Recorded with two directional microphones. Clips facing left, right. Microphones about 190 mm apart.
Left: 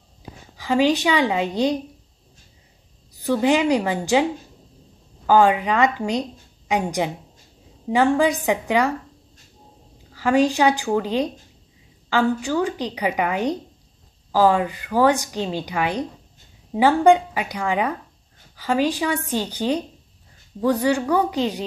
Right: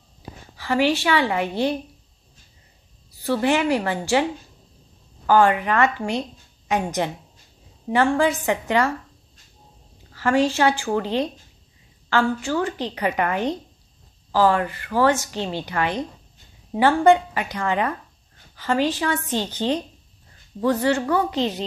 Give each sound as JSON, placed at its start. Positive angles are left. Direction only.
{"t": 0.6, "sound": "a woman's voice", "side_deg": 15}
{"t": 3.2, "sound": "a woman's voice", "side_deg": 15}
{"t": 10.1, "sound": "a woman's voice", "side_deg": 15}